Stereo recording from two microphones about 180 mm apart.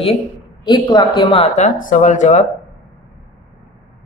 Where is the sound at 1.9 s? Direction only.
45° left (ahead or behind).